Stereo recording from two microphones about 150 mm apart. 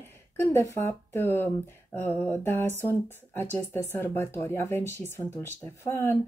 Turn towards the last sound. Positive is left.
turn(degrees=15)  # may be behind; listen again after turning